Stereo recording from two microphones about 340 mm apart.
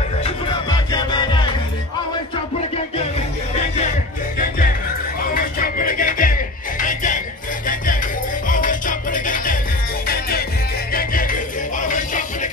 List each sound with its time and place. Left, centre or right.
0.2 s music: centre
5.3 s music: left